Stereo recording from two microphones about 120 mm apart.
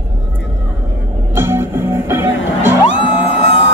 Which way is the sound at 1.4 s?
20° right (ahead or behind).